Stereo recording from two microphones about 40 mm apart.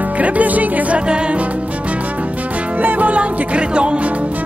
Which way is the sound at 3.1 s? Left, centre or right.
Right.